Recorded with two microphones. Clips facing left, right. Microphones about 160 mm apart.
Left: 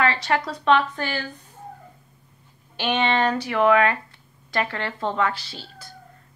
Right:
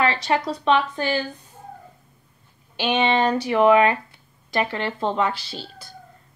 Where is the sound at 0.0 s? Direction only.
20° right (ahead or behind).